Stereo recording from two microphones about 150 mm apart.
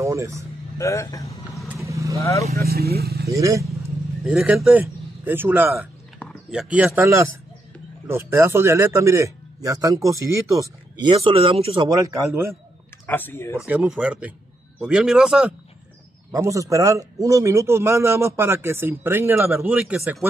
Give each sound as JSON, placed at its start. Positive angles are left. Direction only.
{"t": 0.0, "sound": "speech", "side_deg": -20}
{"t": 0.7, "sound": "speech", "side_deg": 20}
{"t": 1.9, "sound": "vehicle", "side_deg": -20}
{"t": 2.1, "sound": "speech", "side_deg": 20}
{"t": 2.6, "sound": "speech", "side_deg": -90}
{"t": 3.3, "sound": "speech", "side_deg": -20}
{"t": 4.2, "sound": "speech", "side_deg": -5}
{"t": 6.1, "sound": "a sound", "side_deg": 0}
{"t": 7.0, "sound": "a man's voice", "side_deg": -15}
{"t": 12.1, "sound": "speech", "side_deg": -20}
{"t": 13.0, "sound": "speech", "side_deg": 15}
{"t": 13.7, "sound": "a man's voice", "side_deg": -10}
{"t": 16.3, "sound": "a man's voice", "side_deg": -20}